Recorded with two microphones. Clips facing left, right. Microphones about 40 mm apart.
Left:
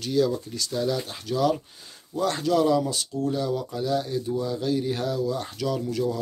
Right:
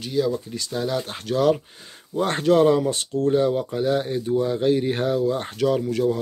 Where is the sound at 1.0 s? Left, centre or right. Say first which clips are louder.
Right 3 dB; right.